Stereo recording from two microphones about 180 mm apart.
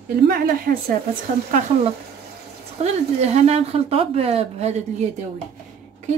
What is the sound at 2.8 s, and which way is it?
Speech, 35° right (ahead or behind).